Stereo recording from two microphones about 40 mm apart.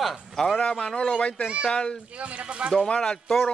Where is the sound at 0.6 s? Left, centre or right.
Left.